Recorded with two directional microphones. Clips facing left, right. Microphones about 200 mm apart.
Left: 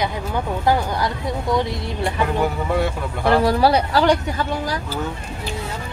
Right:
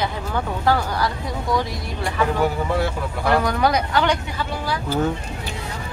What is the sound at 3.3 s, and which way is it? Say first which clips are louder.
Speech: left 4 dB; 30° left (ahead or behind).